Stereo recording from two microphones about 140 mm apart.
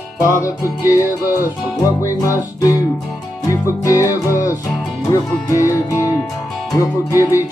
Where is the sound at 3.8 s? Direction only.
20° left (ahead or behind).